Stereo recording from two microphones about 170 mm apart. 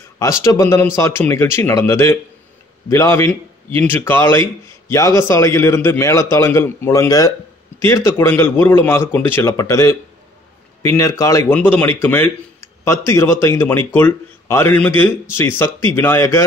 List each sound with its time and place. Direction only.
0.2 s speech: 20° left (ahead or behind)